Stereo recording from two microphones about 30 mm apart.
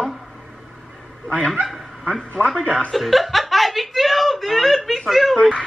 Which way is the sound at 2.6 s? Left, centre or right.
Left.